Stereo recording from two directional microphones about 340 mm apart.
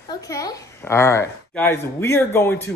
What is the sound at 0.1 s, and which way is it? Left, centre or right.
A woman's voice, centre.